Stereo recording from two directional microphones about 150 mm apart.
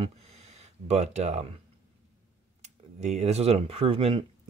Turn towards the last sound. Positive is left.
turn(degrees=-40)  # may be behind; listen again after turning